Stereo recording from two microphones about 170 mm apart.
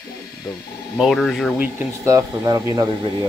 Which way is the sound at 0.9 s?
Centre (ahead or behind).